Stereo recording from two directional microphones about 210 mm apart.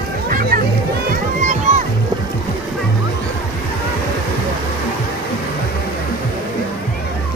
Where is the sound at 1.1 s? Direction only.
35° right (ahead or behind).